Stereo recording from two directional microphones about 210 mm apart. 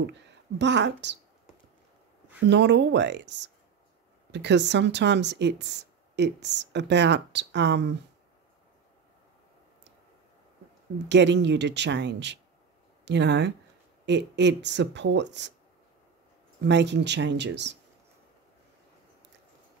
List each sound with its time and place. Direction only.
0.0 s speech: 55° right (ahead or behind)
2.4 s speech: 55° right (ahead or behind)
11.1 s speech: 55° right (ahead or behind)
16.6 s speech: 55° right (ahead or behind)